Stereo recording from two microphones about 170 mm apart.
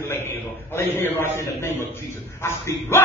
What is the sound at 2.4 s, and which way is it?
Speech, 15° left (ahead or behind).